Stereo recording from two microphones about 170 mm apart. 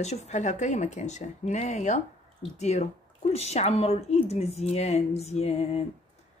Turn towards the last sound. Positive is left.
turn(degrees=40)  # may be behind; listen again after turning